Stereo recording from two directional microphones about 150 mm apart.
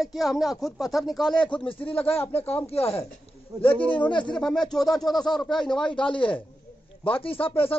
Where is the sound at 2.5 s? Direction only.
40° left (ahead or behind).